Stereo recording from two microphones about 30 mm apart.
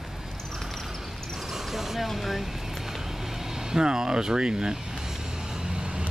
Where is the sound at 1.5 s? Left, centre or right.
Centre.